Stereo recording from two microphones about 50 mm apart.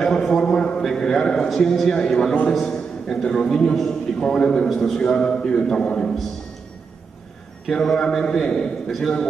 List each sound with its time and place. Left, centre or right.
0.0 s a man's voice: centre
7.6 s a man's voice: centre